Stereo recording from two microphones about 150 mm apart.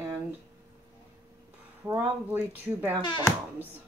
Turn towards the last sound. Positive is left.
turn(degrees=30)  # may be behind; listen again after turning